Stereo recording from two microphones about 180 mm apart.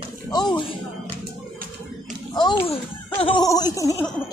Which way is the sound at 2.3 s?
25° left (ahead or behind).